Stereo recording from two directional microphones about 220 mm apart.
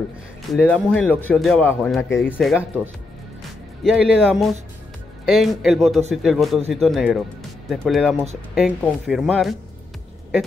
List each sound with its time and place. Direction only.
0.5 s a man's voice: 5° left (ahead or behind)
3.8 s a man's voice: centre (ahead or behind)